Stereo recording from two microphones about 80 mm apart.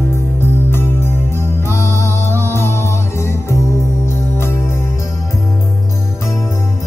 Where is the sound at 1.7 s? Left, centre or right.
Left.